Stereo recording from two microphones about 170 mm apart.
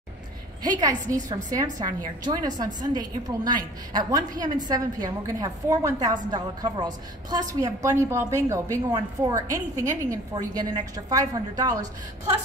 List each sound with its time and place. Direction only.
0.7 s a woman's voice: 20° right (ahead or behind)